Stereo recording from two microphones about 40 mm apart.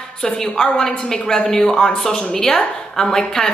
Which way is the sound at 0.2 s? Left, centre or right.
Centre.